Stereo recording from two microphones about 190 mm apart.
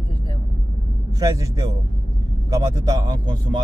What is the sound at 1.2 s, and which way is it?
Speech, 20° right (ahead or behind).